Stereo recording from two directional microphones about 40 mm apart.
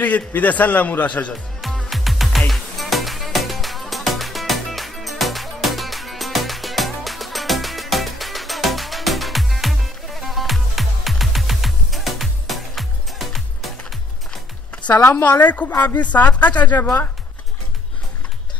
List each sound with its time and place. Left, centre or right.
0.0 s speech: left
1.9 s music: centre
15.2 s speech: left